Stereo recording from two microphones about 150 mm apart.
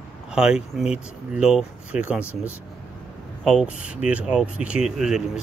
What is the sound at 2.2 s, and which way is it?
Speech, 15° left (ahead or behind).